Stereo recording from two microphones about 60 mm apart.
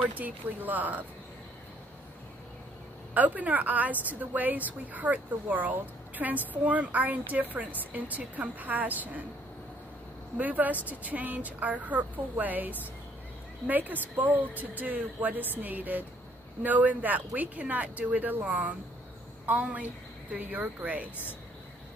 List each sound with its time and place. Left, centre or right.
0.0 s speech: right
3.2 s speech: right
10.4 s speech: right